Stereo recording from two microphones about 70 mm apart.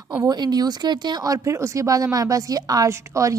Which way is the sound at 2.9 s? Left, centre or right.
Right.